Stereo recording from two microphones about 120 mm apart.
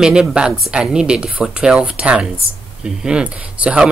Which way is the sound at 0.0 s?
5° right (ahead or behind).